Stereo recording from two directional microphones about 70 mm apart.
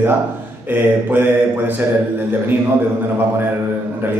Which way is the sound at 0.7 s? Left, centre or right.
Right.